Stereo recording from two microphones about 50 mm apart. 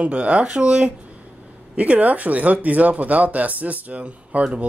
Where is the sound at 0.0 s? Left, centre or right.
Right.